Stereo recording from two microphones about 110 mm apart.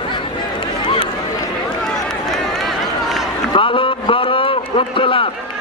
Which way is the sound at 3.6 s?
50° left (ahead or behind).